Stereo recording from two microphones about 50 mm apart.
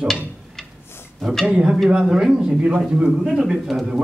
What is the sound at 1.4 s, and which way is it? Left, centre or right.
A man's voice, centre.